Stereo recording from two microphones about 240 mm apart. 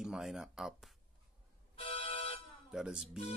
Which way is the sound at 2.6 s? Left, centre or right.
Centre.